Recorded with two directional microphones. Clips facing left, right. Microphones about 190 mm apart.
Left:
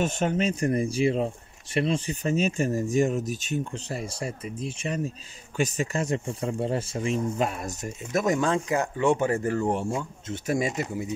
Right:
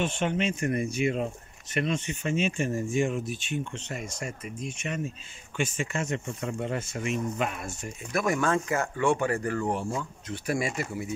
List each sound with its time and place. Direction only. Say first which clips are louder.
0.0 s speech: left 2 dB; 40° left (ahead or behind)
8.1 s speech: left 2 dB; 20° left (ahead or behind)